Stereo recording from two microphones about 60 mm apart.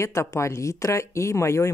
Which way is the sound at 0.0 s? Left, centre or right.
Left.